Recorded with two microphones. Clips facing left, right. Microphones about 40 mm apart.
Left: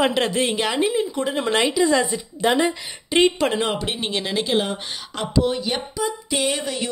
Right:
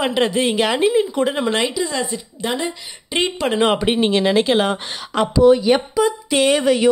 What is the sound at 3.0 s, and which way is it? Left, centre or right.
Speech, centre.